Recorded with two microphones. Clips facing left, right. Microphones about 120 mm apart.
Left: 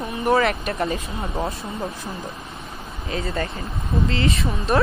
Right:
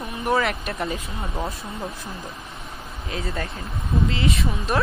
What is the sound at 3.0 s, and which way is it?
Speech, centre (ahead or behind).